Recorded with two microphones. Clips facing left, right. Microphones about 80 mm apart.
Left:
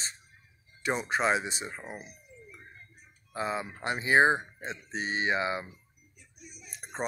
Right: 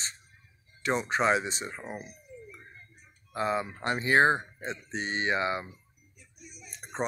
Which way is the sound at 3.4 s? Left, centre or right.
Centre.